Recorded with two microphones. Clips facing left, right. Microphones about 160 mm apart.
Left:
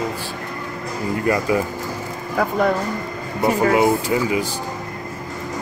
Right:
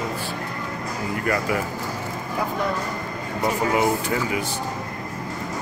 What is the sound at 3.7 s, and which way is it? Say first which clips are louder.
Speech: left 5 dB; 20° left (ahead or behind).